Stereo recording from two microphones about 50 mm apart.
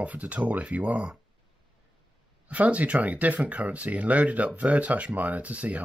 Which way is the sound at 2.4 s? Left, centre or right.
Right.